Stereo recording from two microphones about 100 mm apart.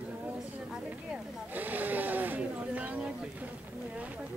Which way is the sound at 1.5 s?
15° right (ahead or behind).